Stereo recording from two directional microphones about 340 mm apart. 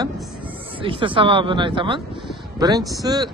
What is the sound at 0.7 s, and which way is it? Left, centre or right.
Speech, centre.